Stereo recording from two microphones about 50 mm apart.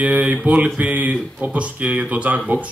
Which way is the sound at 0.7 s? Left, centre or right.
Right.